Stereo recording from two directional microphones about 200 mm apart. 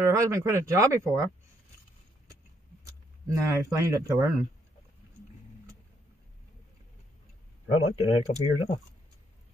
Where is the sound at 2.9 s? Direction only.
15° right (ahead or behind).